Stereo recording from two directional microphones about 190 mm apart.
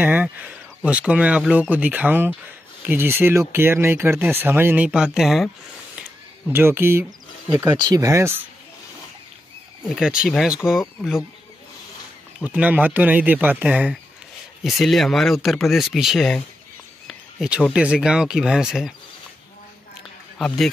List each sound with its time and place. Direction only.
0.0 s speech: 5° right (ahead or behind)
7.1 s a sound: 5° right (ahead or behind)
7.7 s speech: 20° right (ahead or behind)
9.8 s speech: 5° right (ahead or behind)
12.4 s speech: 10° right (ahead or behind)
20.3 s speech: centre (ahead or behind)